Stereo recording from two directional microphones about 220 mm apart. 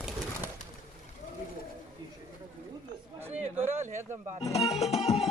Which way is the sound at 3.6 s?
10° right (ahead or behind).